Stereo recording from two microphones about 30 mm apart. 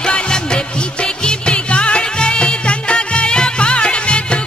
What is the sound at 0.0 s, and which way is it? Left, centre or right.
Music, left.